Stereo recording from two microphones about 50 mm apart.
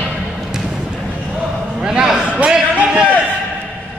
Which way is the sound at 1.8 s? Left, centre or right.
Centre.